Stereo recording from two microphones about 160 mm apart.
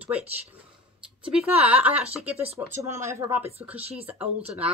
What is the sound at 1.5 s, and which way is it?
Speech, 40° right (ahead or behind).